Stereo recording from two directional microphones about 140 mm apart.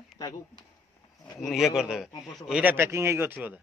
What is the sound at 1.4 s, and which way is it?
A man's voice, centre (ahead or behind).